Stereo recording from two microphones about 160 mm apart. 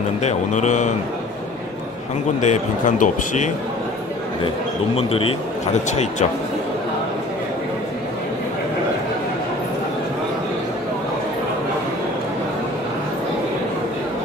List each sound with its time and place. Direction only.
0.2 s a man's voice: 45° left (ahead or behind)
2.4 s a man's voice: 50° left (ahead or behind)
4.9 s a man's voice: 35° left (ahead or behind)